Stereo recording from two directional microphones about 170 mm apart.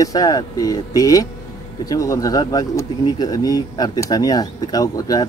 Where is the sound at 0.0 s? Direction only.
20° left (ahead or behind).